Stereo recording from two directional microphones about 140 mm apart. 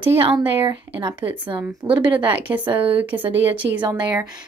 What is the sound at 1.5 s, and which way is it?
A woman's voice, 35° right (ahead or behind).